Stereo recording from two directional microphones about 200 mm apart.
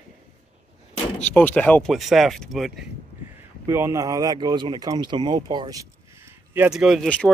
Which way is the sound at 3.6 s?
15° right (ahead or behind).